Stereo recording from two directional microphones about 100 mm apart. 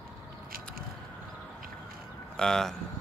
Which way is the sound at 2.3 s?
5° left (ahead or behind).